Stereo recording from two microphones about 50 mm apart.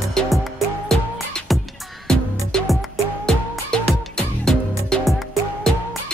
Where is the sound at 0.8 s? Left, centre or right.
Centre.